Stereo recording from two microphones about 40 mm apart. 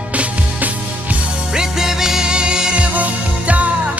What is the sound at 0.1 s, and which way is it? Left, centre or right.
Music, right.